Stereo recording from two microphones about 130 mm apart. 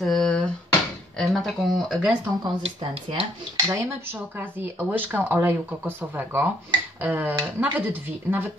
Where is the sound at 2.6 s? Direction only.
50° right (ahead or behind).